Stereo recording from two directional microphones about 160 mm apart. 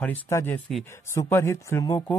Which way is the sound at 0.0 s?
15° left (ahead or behind).